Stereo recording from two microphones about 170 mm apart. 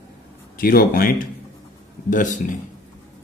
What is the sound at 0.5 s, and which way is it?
A man's voice, 55° left (ahead or behind).